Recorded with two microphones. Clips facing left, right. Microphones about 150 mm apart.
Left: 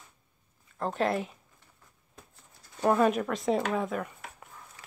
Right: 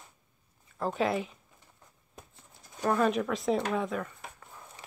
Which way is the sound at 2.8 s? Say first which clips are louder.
Left 2 dB; 10° left (ahead or behind).